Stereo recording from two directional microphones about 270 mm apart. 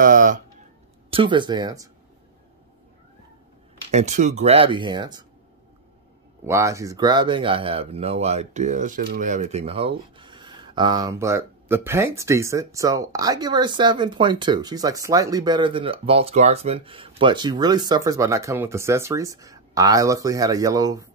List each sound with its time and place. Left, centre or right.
0.0 s a sound: right
1.1 s speech: centre
3.9 s speech: right
6.4 s speech: centre